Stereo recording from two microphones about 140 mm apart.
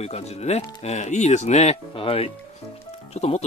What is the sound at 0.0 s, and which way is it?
Speech, 50° left (ahead or behind).